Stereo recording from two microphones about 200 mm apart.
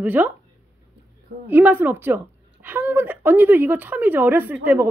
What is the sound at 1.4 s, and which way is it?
A woman's voice, 10° right (ahead or behind).